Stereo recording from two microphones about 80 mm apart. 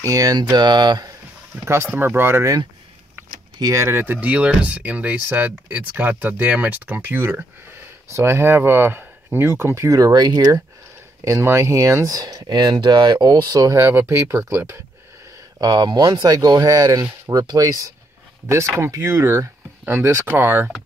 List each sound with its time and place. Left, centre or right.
0.0 s speech: right
1.5 s speech: right
3.7 s speech: right
4.0 s speech: right
9.9 s speech: right
11.2 s speech: right
13.7 s speech: right
15.6 s speech: right
18.5 s speech: right